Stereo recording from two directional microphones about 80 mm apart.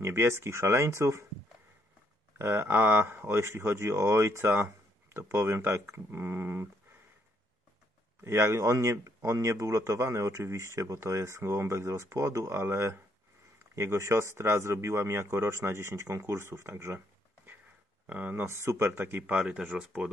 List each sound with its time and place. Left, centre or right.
0.0 s speech: right
2.3 s speech: right
8.2 s speech: right
18.0 s speech: right